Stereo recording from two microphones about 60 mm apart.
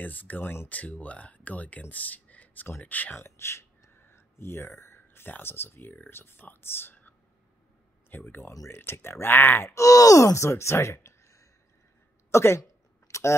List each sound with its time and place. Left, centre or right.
0.0 s speech: left
3.2 s speech: left
8.1 s speech: left
8.5 s speech: left
9.8 s a woman's voice: left
13.1 s a sound: left